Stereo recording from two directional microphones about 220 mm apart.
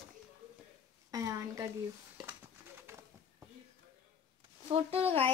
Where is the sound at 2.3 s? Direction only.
10° right (ahead or behind).